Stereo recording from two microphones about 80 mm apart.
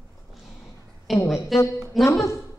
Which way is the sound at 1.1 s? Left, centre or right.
Centre.